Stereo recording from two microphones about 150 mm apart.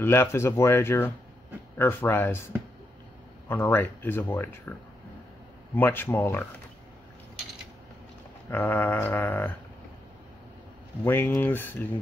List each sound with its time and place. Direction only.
0.0 s speech: 15° left (ahead or behind)
5.8 s speech: 15° left (ahead or behind)
8.5 s speech: 15° left (ahead or behind)
11.1 s speech: 15° left (ahead or behind)